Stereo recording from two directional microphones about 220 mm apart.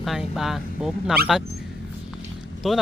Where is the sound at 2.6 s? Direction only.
Centre (ahead or behind).